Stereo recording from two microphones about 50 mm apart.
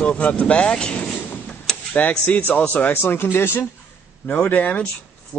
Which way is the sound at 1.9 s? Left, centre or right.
Left.